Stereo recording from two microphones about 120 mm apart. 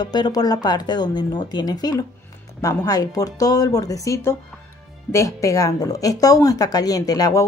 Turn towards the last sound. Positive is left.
turn(degrees=30)  # may be behind; listen again after turning